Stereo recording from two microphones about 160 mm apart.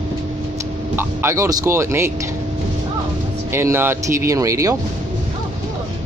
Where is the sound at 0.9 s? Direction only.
15° right (ahead or behind).